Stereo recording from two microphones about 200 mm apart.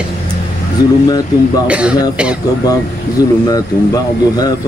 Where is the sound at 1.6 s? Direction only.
5° right (ahead or behind).